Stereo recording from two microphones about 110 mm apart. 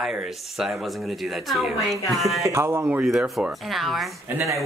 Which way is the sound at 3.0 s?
Centre (ahead or behind).